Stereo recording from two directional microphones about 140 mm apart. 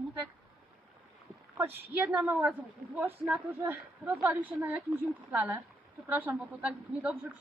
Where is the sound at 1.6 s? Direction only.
15° right (ahead or behind).